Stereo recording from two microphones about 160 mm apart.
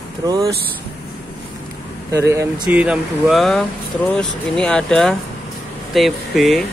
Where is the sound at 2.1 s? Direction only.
20° right (ahead or behind).